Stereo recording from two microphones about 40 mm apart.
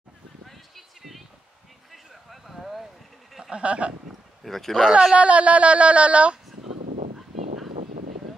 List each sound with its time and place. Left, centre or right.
0.5 s a sound: centre
3.5 s speech: right
4.4 s speech: centre
5.1 s speech: right